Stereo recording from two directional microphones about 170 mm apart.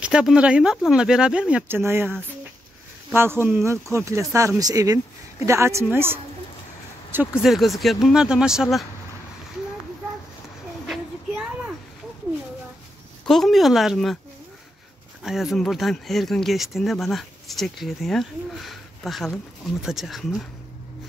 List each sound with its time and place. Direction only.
0.0 s speech: 5° right (ahead or behind)
3.1 s speech: 15° right (ahead or behind)
7.5 s speech: centre (ahead or behind)
13.3 s speech: centre (ahead or behind)
15.2 s speech: centre (ahead or behind)